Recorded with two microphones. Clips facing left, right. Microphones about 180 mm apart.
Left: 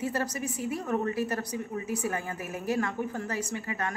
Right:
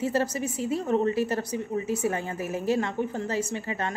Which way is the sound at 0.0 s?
25° right (ahead or behind).